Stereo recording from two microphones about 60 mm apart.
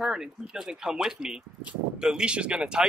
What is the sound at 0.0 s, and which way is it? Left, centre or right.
Speech, centre.